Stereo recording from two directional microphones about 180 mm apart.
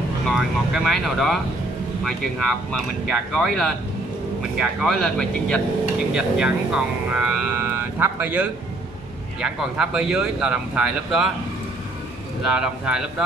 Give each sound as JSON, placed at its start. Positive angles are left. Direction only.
{"t": 0.3, "sound": "speech", "side_deg": 0}
{"t": 12.4, "sound": "speech", "side_deg": -5}